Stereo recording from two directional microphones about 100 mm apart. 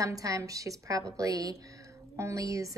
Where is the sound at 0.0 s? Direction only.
35° right (ahead or behind).